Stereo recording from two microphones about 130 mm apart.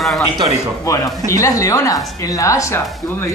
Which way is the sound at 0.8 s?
25° left (ahead or behind).